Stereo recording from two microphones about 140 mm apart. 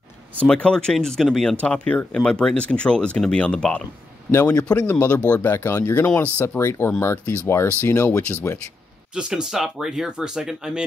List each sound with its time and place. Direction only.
0.5 s speech: 5° left (ahead or behind)
9.1 s speech: 5° right (ahead or behind)